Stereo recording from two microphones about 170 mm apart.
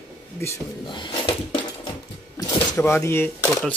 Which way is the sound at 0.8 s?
30° left (ahead or behind).